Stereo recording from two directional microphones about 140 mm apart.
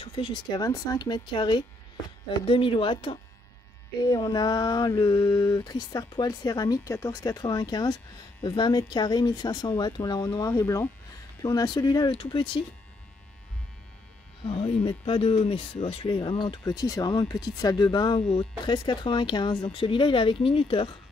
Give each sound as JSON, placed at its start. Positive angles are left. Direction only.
{"t": 0.0, "sound": "speech", "side_deg": 40}
{"t": 4.0, "sound": "a sound", "side_deg": 30}
{"t": 11.4, "sound": "speech", "side_deg": 30}
{"t": 14.4, "sound": "speech", "side_deg": 40}